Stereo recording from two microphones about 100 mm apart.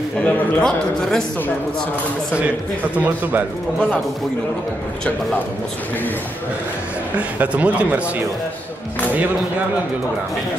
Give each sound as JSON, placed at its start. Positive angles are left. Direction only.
{"t": 0.2, "sound": "a man's voice", "side_deg": 10}
{"t": 3.0, "sound": "speech", "side_deg": -20}
{"t": 7.2, "sound": "speech", "side_deg": -15}